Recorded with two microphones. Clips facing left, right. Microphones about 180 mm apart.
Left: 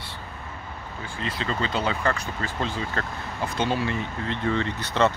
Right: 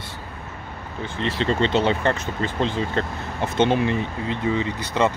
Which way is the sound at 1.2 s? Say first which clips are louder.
Right 7 dB; 30° right (ahead or behind).